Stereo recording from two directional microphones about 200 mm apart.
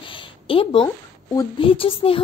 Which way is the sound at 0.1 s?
25° left (ahead or behind).